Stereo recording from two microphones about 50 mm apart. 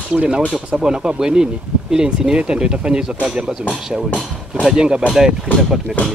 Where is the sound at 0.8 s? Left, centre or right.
Centre.